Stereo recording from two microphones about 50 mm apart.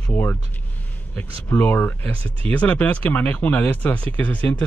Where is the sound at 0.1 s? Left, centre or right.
Left.